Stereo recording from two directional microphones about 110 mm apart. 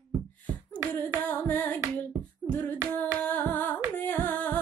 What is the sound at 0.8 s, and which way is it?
Carnatic music, 15° left (ahead or behind).